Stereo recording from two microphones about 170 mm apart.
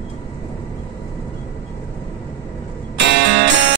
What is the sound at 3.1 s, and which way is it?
Music, 90° right.